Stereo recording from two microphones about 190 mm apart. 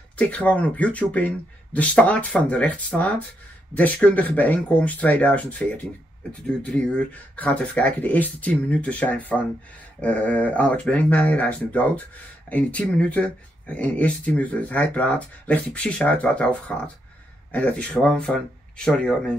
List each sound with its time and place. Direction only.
0.2 s speech: 10° left (ahead or behind)